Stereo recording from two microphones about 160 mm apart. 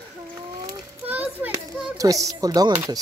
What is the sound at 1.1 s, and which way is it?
Children playing, 10° right (ahead or behind).